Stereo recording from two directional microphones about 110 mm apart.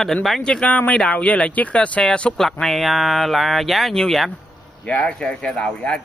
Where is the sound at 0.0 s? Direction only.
Centre (ahead or behind).